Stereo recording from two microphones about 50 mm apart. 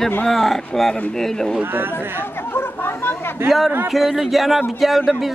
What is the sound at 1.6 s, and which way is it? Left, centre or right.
Speech, right.